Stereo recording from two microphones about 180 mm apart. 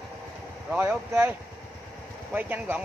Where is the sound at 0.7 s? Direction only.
10° right (ahead or behind).